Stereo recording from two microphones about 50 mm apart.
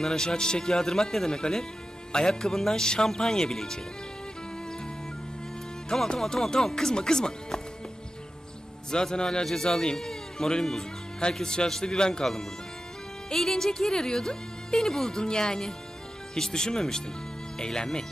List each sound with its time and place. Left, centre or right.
0.0 s speech: centre
5.9 s speech: centre
8.9 s speech: centre